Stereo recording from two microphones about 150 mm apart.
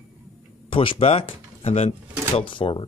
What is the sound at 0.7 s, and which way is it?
Speech, 35° left (ahead or behind).